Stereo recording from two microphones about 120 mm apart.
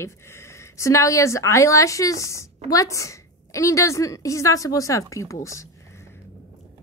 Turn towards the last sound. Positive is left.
turn(degrees=25)  # may be behind; listen again after turning